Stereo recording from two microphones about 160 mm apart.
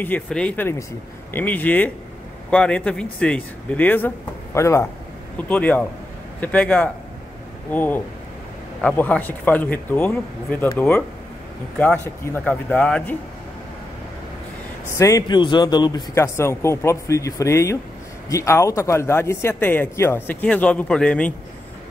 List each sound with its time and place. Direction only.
0.0 s speech: 10° left (ahead or behind)
14.9 s speech: 20° left (ahead or behind)